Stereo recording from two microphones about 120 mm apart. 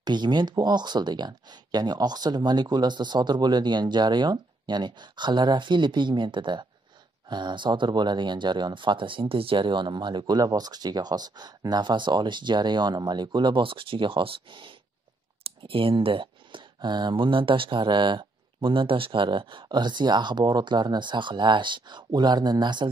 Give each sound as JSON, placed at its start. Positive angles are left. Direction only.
{"t": 0.0, "sound": "speech", "side_deg": -40}